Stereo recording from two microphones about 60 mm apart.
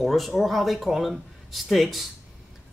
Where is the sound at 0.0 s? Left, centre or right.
Centre.